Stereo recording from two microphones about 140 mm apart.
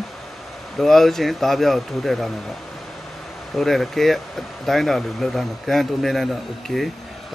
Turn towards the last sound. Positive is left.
turn(degrees=0)  # may be behind; listen again after turning